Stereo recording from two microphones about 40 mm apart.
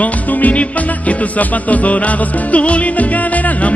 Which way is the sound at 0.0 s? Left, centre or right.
Left.